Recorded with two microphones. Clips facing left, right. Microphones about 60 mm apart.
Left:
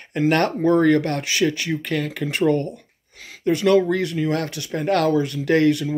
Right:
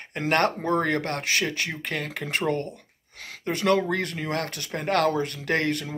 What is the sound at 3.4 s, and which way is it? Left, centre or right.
Speech, right.